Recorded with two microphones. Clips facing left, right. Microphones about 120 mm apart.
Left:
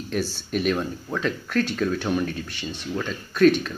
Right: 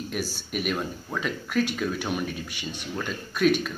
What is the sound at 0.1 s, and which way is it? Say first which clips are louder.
Speech: left 8 dB; 5° right (ahead or behind).